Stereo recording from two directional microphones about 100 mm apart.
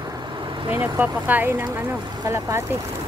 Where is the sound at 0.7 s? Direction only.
20° right (ahead or behind).